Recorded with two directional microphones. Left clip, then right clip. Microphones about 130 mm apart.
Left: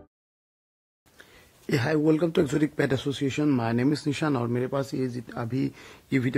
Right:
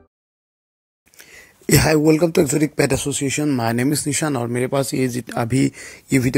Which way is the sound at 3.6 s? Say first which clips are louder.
Right 6 dB; 40° right (ahead or behind).